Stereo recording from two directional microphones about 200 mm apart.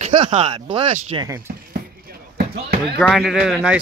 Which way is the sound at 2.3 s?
50° right (ahead or behind).